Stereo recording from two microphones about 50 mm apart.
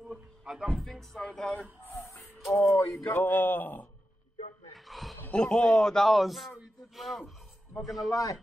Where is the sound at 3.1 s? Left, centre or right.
Left.